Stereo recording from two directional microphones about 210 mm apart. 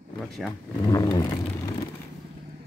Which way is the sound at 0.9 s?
15° left (ahead or behind).